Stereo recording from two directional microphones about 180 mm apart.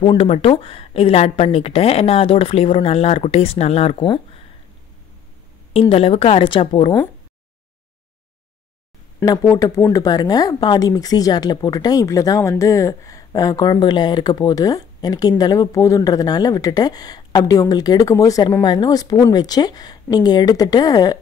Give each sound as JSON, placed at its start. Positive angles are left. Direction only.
{"t": 0.0, "sound": "a woman's voice", "side_deg": 30}
{"t": 5.7, "sound": "a woman's voice", "side_deg": 30}
{"t": 9.2, "sound": "speech", "side_deg": 20}